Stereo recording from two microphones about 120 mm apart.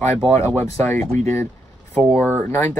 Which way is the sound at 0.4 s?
20° left (ahead or behind).